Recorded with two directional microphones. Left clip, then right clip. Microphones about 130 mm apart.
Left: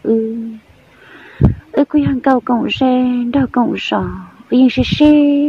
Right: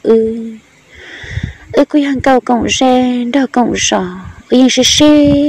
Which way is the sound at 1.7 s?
10° right (ahead or behind).